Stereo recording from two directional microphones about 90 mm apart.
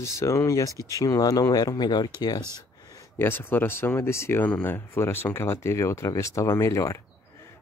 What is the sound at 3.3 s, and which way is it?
Speech, 25° left (ahead or behind).